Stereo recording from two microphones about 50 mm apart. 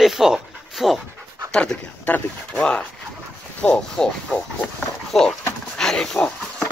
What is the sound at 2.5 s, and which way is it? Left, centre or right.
Speech, left.